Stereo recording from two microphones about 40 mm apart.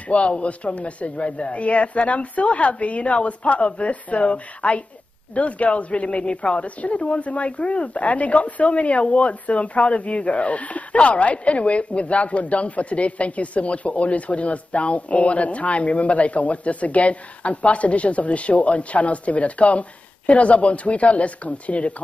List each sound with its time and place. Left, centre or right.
0.1 s speech: left